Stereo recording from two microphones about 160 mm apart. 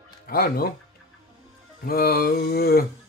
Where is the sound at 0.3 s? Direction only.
70° left (ahead or behind).